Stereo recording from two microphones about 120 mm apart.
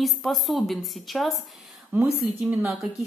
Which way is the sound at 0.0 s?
Centre (ahead or behind).